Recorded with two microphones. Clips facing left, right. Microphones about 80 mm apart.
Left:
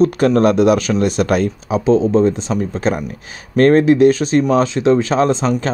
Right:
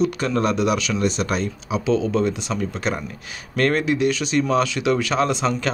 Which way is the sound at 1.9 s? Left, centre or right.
Left.